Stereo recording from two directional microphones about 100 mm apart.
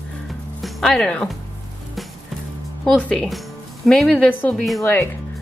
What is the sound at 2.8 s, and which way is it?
A woman's voice, 10° left (ahead or behind).